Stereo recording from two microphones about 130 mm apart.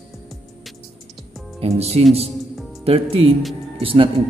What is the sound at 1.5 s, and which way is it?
Speech, 50° right (ahead or behind).